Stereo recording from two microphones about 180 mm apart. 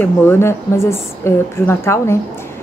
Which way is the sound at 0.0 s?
15° left (ahead or behind).